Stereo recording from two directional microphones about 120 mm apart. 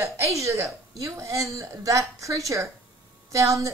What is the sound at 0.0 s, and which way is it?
Speech, 25° right (ahead or behind).